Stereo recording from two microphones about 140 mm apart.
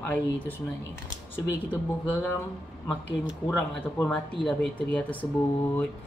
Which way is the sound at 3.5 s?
10° left (ahead or behind).